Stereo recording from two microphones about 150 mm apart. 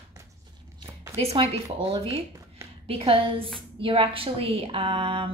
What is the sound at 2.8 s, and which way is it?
A woman's voice, 40° right (ahead or behind).